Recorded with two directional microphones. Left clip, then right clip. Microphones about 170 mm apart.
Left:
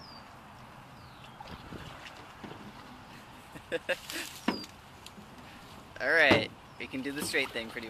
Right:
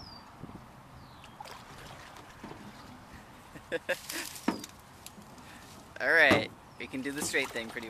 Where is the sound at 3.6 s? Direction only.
Centre (ahead or behind).